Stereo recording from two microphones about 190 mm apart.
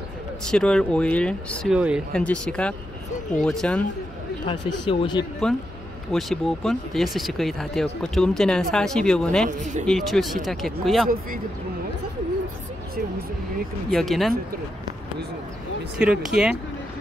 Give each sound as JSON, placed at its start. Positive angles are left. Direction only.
{"t": 0.5, "sound": "speech", "side_deg": 5}
{"t": 4.5, "sound": "speech", "side_deg": 25}
{"t": 6.1, "sound": "speech", "side_deg": 0}
{"t": 9.5, "sound": "speech", "side_deg": -40}
{"t": 9.8, "sound": "speech", "side_deg": 0}
{"t": 13.8, "sound": "speech", "side_deg": 0}
{"t": 16.0, "sound": "speech", "side_deg": -5}